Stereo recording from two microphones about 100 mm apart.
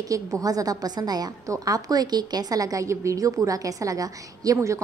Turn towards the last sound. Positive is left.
turn(degrees=-30)  # may be behind; listen again after turning